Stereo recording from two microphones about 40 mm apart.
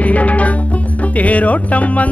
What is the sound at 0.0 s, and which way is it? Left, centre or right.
Music, left.